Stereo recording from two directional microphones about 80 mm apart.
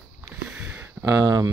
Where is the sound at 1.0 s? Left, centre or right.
Right.